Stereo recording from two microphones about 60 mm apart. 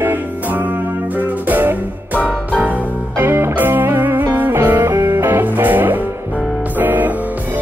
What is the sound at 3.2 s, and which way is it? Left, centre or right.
Music, right.